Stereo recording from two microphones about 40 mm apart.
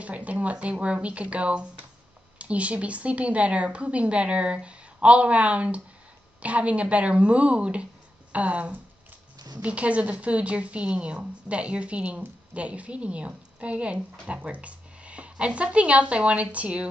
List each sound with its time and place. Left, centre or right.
0.0 s speech: right
12.0 s speech: right
12.5 s speech: right